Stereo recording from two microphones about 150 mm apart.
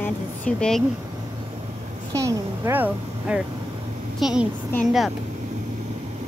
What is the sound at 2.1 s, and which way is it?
A child's voice, 20° right (ahead or behind).